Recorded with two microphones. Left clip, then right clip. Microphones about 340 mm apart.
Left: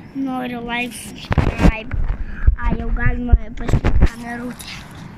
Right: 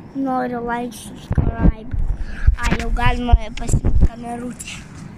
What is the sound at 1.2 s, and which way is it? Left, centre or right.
Heart murmur, left.